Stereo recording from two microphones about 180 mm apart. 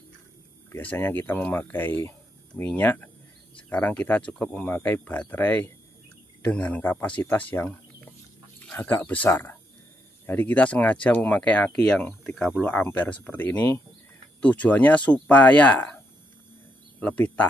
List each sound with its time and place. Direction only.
0.7 s speech: 10° left (ahead or behind)
17.0 s speech: 10° left (ahead or behind)